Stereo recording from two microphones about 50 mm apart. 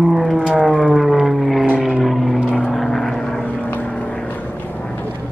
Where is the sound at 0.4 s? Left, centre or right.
Centre.